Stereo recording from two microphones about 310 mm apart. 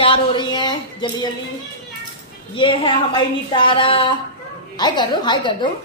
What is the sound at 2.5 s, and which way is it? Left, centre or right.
A woman's voice, centre.